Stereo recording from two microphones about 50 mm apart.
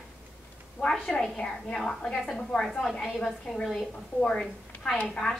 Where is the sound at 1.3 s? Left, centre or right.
Centre.